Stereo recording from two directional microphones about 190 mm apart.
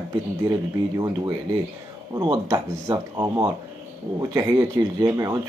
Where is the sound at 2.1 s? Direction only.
20° right (ahead or behind).